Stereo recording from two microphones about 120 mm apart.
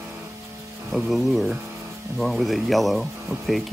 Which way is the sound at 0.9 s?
Centre (ahead or behind).